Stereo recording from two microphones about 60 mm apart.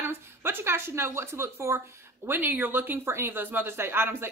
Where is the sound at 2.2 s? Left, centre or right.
Right.